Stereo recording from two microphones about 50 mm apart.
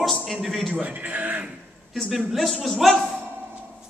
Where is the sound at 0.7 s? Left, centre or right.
Right.